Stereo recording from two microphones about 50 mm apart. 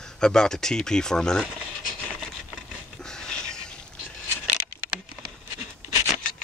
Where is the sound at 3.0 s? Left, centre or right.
Centre.